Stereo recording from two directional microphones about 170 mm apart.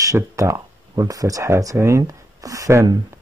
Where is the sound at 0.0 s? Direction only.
20° right (ahead or behind).